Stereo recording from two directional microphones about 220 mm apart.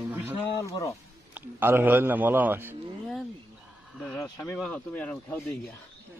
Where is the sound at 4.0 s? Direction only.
5° left (ahead or behind).